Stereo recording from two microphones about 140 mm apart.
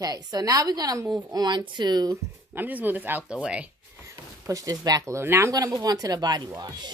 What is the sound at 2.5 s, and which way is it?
Speech, 15° right (ahead or behind).